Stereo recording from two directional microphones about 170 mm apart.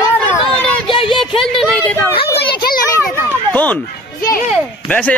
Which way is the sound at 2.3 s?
70° left (ahead or behind).